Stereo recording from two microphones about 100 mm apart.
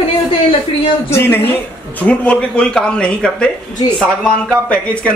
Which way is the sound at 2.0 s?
10° left (ahead or behind).